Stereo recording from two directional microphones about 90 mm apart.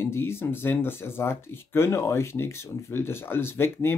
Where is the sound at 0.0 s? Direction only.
30° left (ahead or behind).